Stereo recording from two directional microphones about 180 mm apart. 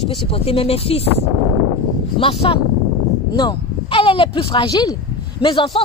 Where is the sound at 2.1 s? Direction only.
30° left (ahead or behind).